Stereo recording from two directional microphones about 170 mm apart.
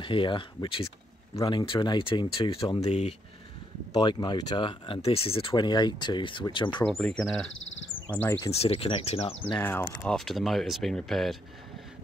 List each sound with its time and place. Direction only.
0.0 s speech: 30° left (ahead or behind)
3.9 s speech: 25° left (ahead or behind)
6.8 s speech: 5° left (ahead or behind)
8.5 s speech: 35° left (ahead or behind)
9.6 s speech: 10° left (ahead or behind)
10.0 s speech: centre (ahead or behind)